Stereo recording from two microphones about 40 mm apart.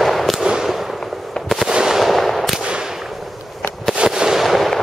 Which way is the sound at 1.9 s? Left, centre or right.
Centre.